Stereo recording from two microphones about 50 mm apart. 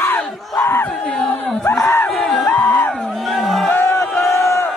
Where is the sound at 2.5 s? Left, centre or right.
Left.